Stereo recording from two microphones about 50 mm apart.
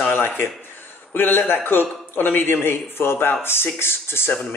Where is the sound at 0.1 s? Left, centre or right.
Left.